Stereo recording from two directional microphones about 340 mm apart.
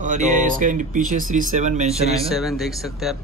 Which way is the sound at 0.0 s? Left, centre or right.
Right.